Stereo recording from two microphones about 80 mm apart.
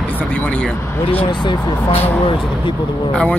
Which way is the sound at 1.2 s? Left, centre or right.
Left.